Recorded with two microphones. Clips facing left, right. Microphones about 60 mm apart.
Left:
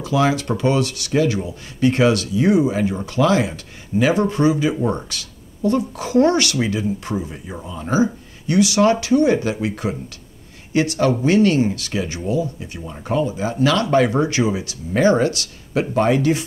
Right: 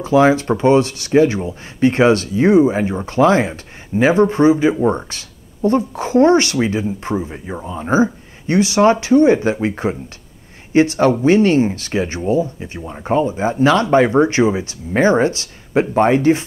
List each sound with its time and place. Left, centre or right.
0.0 s speech: right